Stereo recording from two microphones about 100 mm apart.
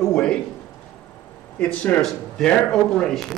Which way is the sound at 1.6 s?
15° left (ahead or behind).